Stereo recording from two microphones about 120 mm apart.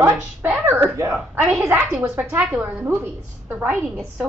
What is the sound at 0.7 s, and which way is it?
A woman's voice, 15° right (ahead or behind).